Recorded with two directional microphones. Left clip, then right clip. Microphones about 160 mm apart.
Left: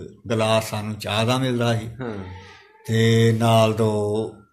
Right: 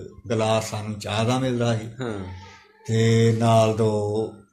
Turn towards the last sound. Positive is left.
turn(degrees=10)  # may be behind; listen again after turning